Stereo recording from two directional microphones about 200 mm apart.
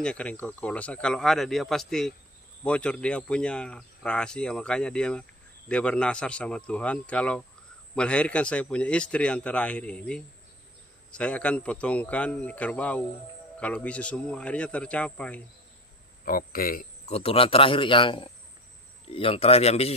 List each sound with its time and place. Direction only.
0.0 s speech: 5° left (ahead or behind)
16.3 s speech: 45° left (ahead or behind)
17.0 s speech: 30° left (ahead or behind)